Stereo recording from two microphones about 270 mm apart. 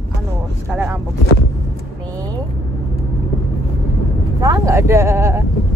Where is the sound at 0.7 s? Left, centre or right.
Centre.